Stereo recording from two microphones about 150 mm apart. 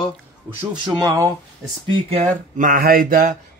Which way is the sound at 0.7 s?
30° right (ahead or behind).